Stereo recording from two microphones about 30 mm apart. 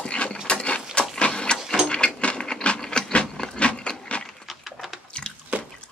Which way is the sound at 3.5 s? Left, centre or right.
Left.